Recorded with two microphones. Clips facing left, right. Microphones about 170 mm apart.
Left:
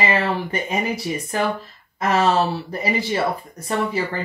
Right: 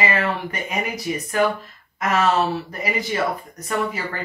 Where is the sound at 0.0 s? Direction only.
30° left (ahead or behind).